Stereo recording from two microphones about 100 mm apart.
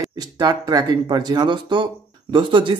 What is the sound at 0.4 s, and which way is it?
Speech, 45° right (ahead or behind).